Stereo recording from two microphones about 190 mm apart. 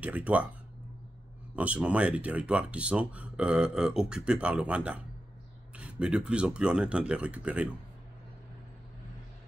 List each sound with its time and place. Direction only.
0.0 s speech: 10° right (ahead or behind)
1.5 s speech: 5° right (ahead or behind)